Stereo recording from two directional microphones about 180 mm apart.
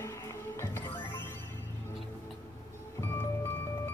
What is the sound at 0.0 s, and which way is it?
Music, 15° left (ahead or behind).